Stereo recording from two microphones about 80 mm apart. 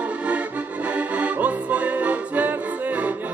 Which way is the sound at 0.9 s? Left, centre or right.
Centre.